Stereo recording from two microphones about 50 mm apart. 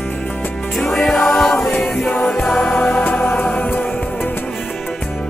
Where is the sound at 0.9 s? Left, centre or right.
Centre.